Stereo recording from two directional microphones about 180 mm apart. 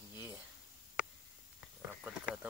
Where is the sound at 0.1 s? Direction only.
15° right (ahead or behind).